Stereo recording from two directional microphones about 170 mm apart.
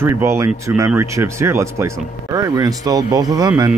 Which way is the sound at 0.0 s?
15° right (ahead or behind).